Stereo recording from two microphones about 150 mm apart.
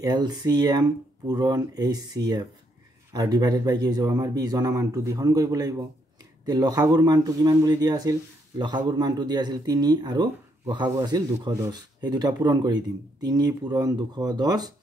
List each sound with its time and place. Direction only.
0.0 s speech: 25° right (ahead or behind)